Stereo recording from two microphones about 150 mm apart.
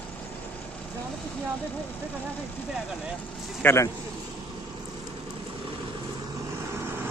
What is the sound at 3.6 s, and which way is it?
Speech, 20° left (ahead or behind).